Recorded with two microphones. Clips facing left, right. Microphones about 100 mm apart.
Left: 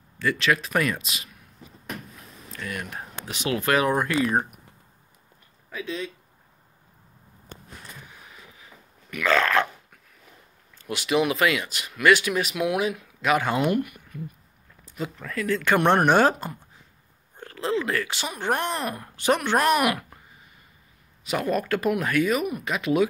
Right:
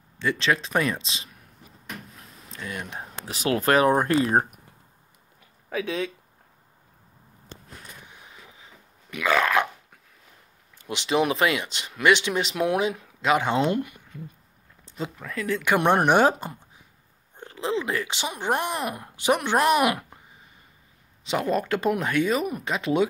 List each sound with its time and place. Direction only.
0.2 s speech: 25° right (ahead or behind)
2.5 s speech: 25° right (ahead or behind)
3.3 s speech: 35° right (ahead or behind)
5.7 s speech: 65° right (ahead or behind)
8.3 s vehicle: 25° right (ahead or behind)
9.1 s speech: 15° right (ahead or behind)
10.8 s speech: 20° right (ahead or behind)
14.9 s a sound: 25° right (ahead or behind)
15.3 s speech: 15° right (ahead or behind)
21.2 s speech: 25° right (ahead or behind)